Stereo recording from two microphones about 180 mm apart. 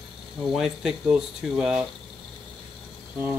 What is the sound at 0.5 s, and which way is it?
Speech, 5° right (ahead or behind).